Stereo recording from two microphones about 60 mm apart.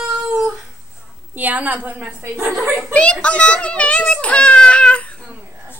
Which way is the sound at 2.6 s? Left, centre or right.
Right.